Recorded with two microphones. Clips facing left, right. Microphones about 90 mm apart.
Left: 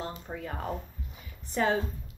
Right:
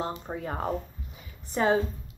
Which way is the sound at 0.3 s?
35° right (ahead or behind).